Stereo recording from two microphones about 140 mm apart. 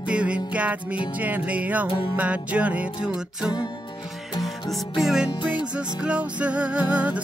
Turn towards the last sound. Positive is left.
turn(degrees=-10)  # may be behind; listen again after turning